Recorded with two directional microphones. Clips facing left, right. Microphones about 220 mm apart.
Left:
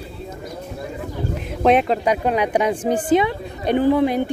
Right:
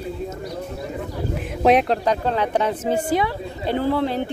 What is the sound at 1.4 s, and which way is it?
A woman's voice, centre (ahead or behind).